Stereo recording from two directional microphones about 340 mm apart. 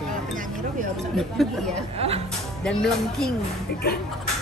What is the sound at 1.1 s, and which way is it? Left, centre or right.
Speech, centre.